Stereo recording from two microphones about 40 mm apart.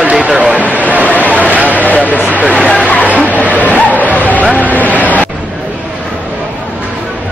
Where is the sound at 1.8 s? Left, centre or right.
Left.